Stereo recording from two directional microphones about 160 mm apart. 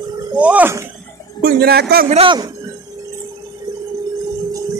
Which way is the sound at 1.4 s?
90° right.